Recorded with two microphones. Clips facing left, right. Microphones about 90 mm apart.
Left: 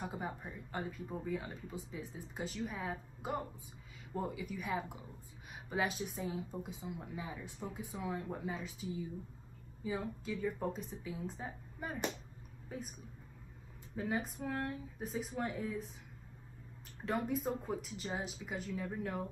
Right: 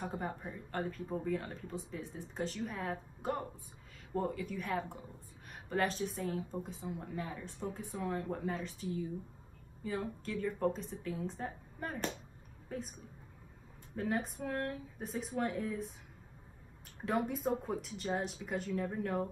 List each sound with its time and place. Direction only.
0.0 s a woman's voice: 5° left (ahead or behind)
13.9 s speech: centre (ahead or behind)
17.0 s speech: centre (ahead or behind)